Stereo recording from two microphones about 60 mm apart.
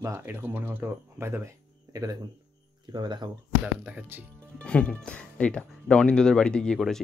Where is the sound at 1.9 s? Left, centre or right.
Right.